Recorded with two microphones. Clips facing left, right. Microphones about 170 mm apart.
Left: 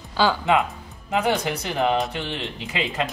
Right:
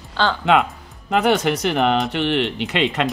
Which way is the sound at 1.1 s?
75° right (ahead or behind).